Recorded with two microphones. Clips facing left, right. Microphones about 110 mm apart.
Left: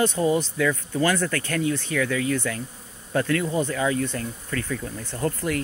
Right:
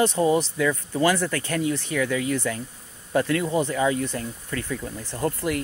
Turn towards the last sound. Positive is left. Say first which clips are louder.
# even
turn(degrees=-20)  # may be behind; listen again after turning